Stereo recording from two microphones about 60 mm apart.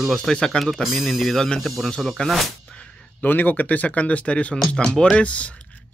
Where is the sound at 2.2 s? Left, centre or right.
Centre.